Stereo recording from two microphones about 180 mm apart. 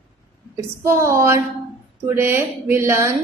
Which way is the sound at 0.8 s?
15° right (ahead or behind).